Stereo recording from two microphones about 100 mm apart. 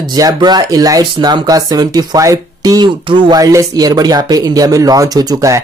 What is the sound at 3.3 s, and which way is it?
Speech, 35° right (ahead or behind).